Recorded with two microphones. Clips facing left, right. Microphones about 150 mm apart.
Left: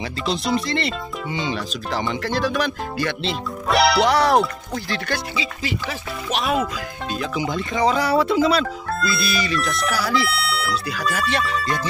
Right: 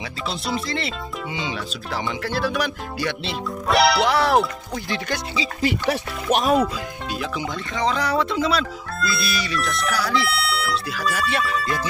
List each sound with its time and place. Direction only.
0.3 s fowl: 5° right (ahead or behind)
4.7 s speech: 20° right (ahead or behind)
5.6 s speech: 55° right (ahead or behind)
7.3 s fowl: 10° left (ahead or behind); by 11.9 s 5° right (ahead or behind)